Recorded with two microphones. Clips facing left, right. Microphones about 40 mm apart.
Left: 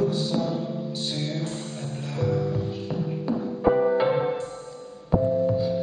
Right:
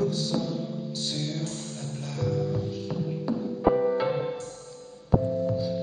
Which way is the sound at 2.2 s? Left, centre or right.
Left.